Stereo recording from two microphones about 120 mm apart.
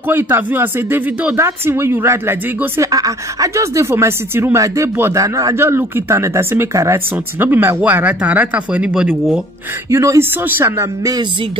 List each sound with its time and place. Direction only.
0.1 s speech: 15° right (ahead or behind)
9.8 s speech: 25° right (ahead or behind)